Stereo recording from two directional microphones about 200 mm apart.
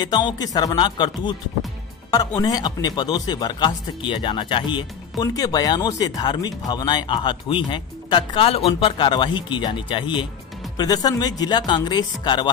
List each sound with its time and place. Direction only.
0.0 s speech: 20° left (ahead or behind)